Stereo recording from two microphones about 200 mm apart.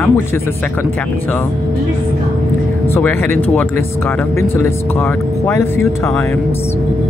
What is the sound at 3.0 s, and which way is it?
Speech, 10° left (ahead or behind).